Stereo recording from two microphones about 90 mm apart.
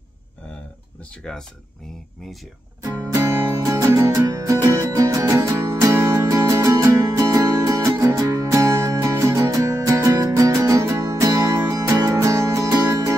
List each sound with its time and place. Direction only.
2.8 s music: 40° right (ahead or behind)
3.3 s music: 25° right (ahead or behind)
3.6 s music: 35° right (ahead or behind)